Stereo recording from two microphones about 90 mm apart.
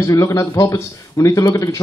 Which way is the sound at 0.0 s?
40° left (ahead or behind).